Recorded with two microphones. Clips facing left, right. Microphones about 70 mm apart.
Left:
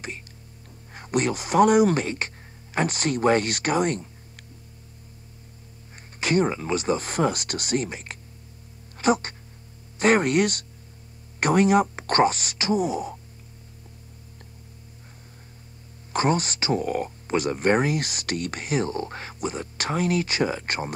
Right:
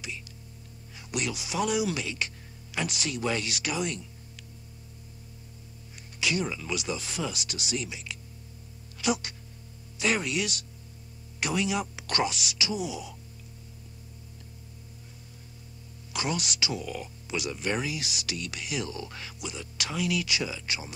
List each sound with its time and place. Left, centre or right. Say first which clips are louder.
0.9 s speech: left 8 dB; left
6.1 s speech: left 8 dB; left
16.1 s speech: left 9 dB; left